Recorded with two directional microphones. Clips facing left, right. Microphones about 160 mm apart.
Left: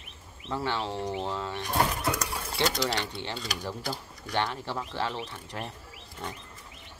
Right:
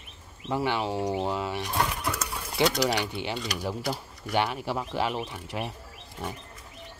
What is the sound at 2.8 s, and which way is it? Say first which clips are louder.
Speech: right 4 dB; 10° right (ahead or behind).